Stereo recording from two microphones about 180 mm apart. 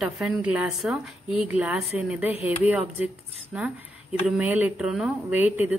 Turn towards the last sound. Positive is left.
turn(degrees=-10)  # may be behind; listen again after turning